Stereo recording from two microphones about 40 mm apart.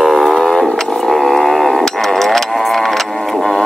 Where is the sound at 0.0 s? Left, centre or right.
Centre.